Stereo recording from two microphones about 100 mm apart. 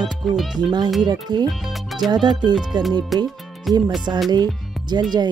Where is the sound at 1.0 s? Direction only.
45° right (ahead or behind).